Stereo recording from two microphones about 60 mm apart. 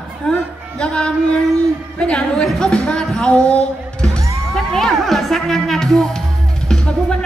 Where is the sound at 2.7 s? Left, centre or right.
Centre.